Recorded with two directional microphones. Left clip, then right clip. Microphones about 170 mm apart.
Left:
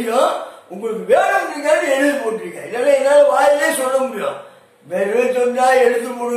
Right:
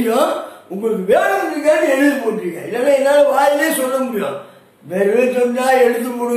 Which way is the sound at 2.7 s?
10° right (ahead or behind).